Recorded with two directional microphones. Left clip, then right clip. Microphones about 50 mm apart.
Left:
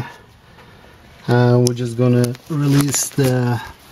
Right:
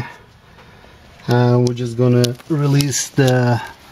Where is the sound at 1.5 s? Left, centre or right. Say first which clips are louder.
Left 1 dB; left.